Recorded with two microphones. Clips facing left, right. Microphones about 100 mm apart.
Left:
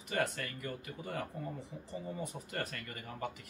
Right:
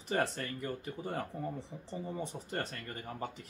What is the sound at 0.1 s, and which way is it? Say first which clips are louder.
A man's voice: right 2 dB; 30° right (ahead or behind).